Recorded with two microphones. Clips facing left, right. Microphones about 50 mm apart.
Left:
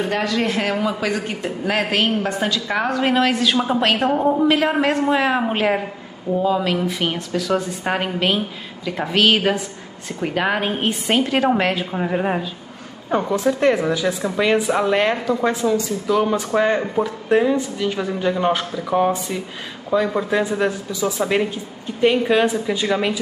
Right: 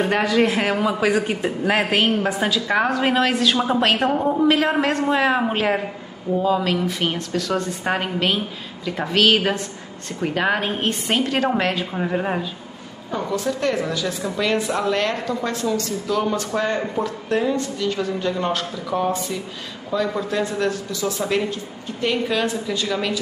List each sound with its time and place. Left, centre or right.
0.1 s speech: centre
13.3 s a woman's voice: left